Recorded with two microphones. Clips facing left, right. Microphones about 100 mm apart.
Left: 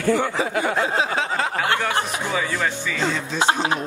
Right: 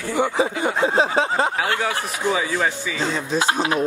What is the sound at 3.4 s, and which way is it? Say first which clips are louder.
Speech: left 2 dB; 30° left (ahead or behind).